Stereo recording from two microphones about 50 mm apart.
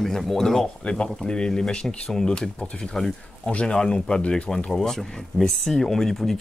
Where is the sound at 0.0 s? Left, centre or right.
Centre.